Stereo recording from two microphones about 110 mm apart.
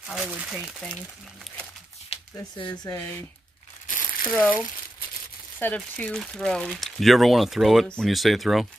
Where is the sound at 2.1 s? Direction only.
65° left (ahead or behind).